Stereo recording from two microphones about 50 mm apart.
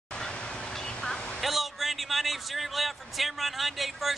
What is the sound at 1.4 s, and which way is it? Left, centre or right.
A man's voice, centre.